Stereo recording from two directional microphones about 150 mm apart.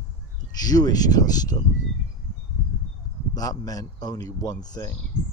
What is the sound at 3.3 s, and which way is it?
Speech, 25° left (ahead or behind).